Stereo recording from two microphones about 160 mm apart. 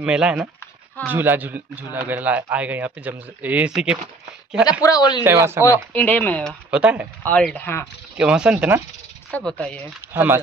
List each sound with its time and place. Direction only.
0.0 s speech: 5° right (ahead or behind)
4.8 s speech: 25° left (ahead or behind)
5.2 s speech: 15° right (ahead or behind)
5.9 s speech: 10° left (ahead or behind)
6.7 s speech: 5° right (ahead or behind)
7.2 s speech: 10° left (ahead or behind)
8.2 s speech: 5° right (ahead or behind)
9.3 s speech: 5° left (ahead or behind)
10.1 s speech: 15° right (ahead or behind)